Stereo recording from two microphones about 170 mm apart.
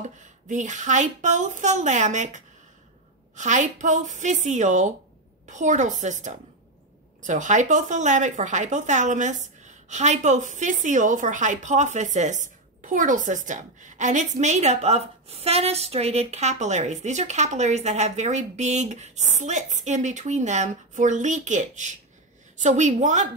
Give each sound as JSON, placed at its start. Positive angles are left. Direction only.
{"t": 0.0, "sound": "a woman's voice", "side_deg": -45}